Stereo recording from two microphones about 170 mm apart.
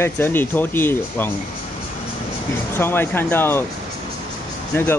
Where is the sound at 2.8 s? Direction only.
15° left (ahead or behind).